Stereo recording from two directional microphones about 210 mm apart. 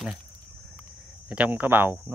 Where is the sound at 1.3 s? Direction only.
5° right (ahead or behind).